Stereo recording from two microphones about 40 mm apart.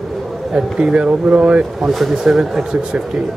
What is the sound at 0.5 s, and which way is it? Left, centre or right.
Speech, centre.